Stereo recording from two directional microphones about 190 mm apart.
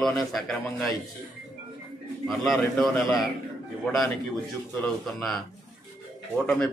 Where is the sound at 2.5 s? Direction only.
Centre (ahead or behind).